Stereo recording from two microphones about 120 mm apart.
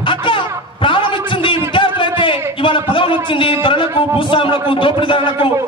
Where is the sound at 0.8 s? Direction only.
45° left (ahead or behind).